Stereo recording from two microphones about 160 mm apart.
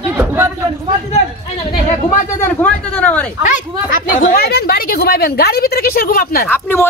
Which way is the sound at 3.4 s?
55° left (ahead or behind).